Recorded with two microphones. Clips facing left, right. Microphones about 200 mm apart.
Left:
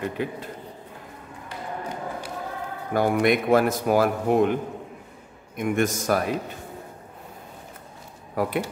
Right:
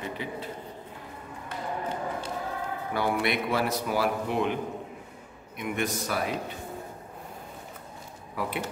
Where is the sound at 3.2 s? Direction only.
50° left (ahead or behind).